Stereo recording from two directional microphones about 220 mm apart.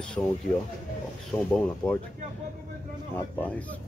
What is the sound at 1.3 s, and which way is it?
Speech, 5° left (ahead or behind).